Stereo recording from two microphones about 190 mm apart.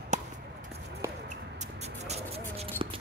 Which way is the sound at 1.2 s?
35° right (ahead or behind).